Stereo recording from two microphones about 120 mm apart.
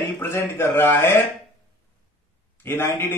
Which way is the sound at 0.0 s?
20° left (ahead or behind).